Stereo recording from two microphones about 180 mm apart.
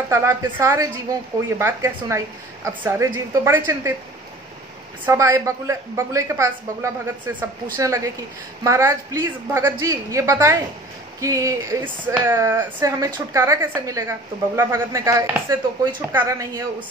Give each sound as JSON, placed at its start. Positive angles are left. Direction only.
{"t": 0.1, "sound": "a woman's voice", "side_deg": -15}
{"t": 5.0, "sound": "a woman's voice", "side_deg": -15}